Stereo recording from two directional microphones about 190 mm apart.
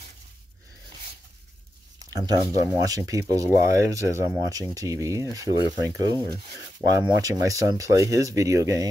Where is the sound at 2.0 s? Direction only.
20° right (ahead or behind).